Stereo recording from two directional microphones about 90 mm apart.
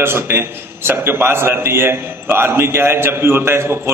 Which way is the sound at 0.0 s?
25° right (ahead or behind).